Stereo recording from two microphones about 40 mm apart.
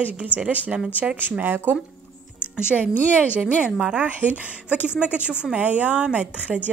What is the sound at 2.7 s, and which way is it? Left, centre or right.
Speech, centre.